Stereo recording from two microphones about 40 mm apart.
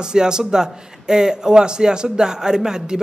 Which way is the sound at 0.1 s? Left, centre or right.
Centre.